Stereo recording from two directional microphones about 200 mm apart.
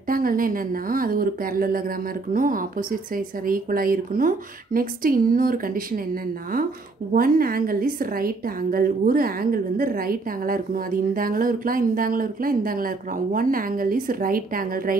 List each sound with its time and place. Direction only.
0.1 s a woman's voice: 45° right (ahead or behind)
7.2 s a woman's voice: 45° right (ahead or behind)